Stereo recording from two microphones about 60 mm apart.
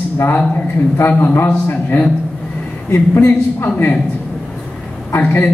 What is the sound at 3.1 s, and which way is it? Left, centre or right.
Speech, left.